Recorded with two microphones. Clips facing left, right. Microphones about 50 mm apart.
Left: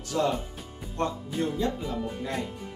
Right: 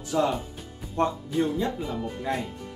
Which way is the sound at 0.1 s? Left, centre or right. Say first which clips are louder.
Right 2 dB; centre.